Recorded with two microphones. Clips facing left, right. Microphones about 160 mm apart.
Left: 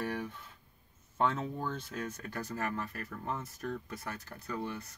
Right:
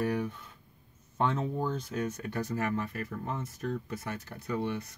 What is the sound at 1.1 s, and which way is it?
Speech, 25° right (ahead or behind).